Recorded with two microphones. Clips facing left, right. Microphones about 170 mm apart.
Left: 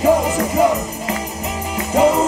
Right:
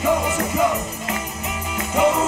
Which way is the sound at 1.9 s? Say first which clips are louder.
Left 4 dB; 35° left (ahead or behind).